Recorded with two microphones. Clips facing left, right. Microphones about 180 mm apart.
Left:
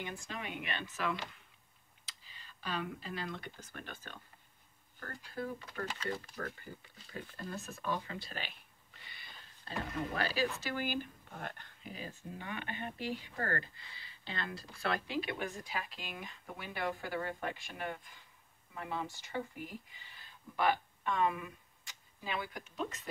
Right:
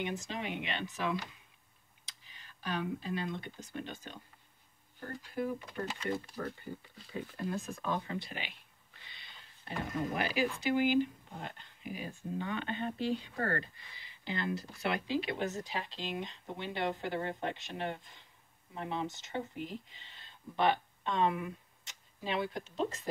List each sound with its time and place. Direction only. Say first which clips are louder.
0.0 s speech: right 5 dB; 20° right (ahead or behind)
2.6 s speech: right 3 dB; 15° right (ahead or behind)
9.0 s a sound: left 1 dB; 20° right (ahead or behind)
10.6 s speech: right 9 dB; 15° right (ahead or behind)
12.6 s speech: right 3 dB; 25° right (ahead or behind)